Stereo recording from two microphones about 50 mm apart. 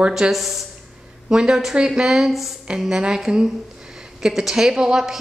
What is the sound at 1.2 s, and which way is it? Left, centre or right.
A woman's voice, centre.